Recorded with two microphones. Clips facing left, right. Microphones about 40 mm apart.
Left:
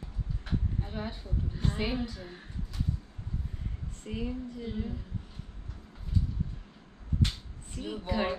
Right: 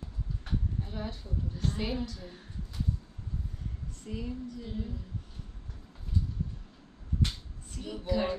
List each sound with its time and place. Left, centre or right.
0.5 s a woman's voice: centre
4.0 s a woman's voice: left
7.2 s a sound: centre